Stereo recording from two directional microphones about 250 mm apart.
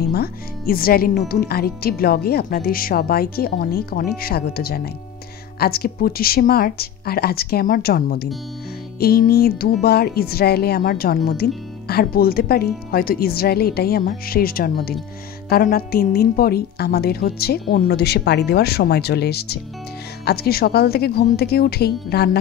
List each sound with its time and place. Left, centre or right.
0.0 s speech: left